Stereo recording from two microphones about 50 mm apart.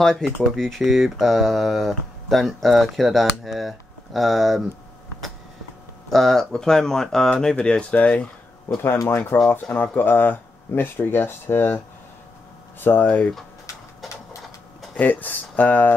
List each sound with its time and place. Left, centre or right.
0.0 s speech: centre
0.8 s speech: centre
6.0 s speech: centre; by 8.3 s left
8.7 s speech: left
12.8 s speech: left
15.0 s speech: left